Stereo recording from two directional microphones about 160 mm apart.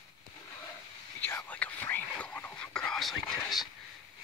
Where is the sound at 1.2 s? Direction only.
15° left (ahead or behind).